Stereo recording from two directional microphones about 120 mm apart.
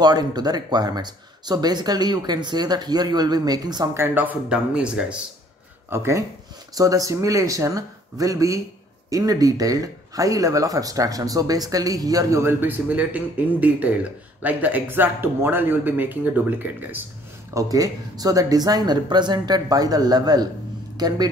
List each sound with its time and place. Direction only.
0.0 s speech: 35° right (ahead or behind)
3.9 s speech: 20° right (ahead or behind)
5.9 s speech: 25° right (ahead or behind)
17.6 s speech: 30° right (ahead or behind)